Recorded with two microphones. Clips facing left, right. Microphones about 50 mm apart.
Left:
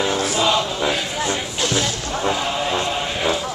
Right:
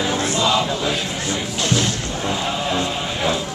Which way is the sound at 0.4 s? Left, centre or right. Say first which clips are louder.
Even; centre.